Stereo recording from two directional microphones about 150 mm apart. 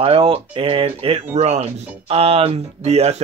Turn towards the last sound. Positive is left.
turn(degrees=-45)  # may be behind; listen again after turning